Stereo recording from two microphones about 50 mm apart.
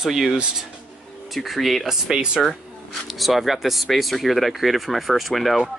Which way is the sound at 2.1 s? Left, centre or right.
Centre.